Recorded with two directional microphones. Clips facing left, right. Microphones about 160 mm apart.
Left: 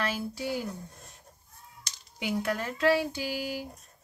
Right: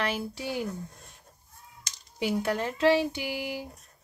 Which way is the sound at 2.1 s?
30° right (ahead or behind).